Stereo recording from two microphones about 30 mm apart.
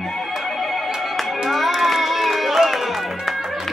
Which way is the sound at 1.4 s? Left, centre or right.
Centre.